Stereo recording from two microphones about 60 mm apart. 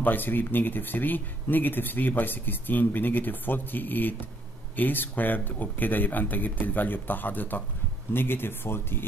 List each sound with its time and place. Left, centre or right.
0.0 s speech: left